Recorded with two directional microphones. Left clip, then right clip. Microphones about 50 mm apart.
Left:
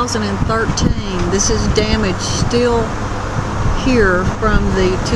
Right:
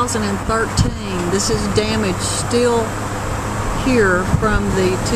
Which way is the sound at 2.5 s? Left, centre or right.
Left.